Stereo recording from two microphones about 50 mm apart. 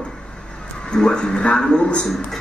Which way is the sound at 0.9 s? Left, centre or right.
Centre.